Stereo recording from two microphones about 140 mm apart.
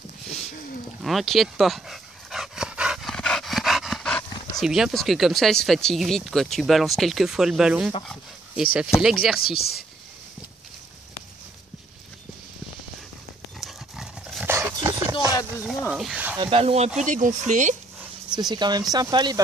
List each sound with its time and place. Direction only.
1.0 s dog: centre (ahead or behind)
4.6 s speech: 5° right (ahead or behind)
9.0 s speech: 5° right (ahead or behind)
9.6 s speech: 90° left
13.6 s horse: centre (ahead or behind)
14.4 s a sound: 20° right (ahead or behind)
14.8 s music: 30° right (ahead or behind)
15.5 s snake: 5° right (ahead or behind)
15.9 s a sound: 5° right (ahead or behind)
16.3 s speech: 40° right (ahead or behind); by 17.7 s 60° right (ahead or behind)
18.3 s speech: 30° right (ahead or behind)